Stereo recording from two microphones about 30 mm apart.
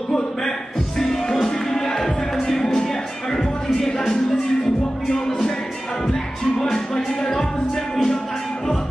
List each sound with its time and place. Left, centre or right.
0.1 s music: centre
5.0 s music: centre